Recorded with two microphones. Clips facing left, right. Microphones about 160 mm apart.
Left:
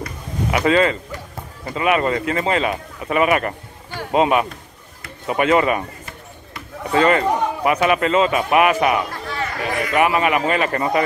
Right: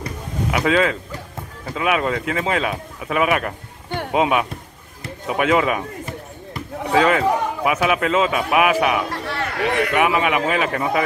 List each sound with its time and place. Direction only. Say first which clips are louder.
0.5 s a man's voice: left 2 dB; centre (ahead or behind)
6.9 s a man's voice: even; centre (ahead or behind)
9.1 s a sound: right 1 dB; 65° right (ahead or behind)
9.9 s a man's voice: left 4 dB; centre (ahead or behind)